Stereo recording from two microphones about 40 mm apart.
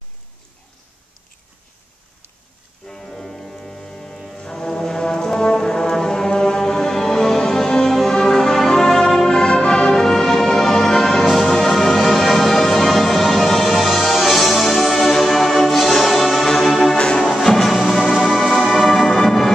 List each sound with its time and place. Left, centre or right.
2.8 s music: centre
4.4 s brass instrument: centre
8.1 s music: centre
16.6 s brass instrument: centre
16.9 s music: centre